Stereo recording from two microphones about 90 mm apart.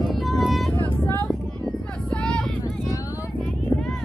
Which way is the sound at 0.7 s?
25° left (ahead or behind).